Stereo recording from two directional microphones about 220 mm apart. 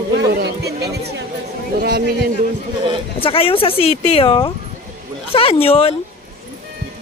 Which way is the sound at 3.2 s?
25° left (ahead or behind).